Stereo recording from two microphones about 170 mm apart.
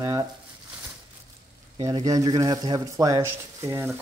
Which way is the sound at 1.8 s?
20° right (ahead or behind).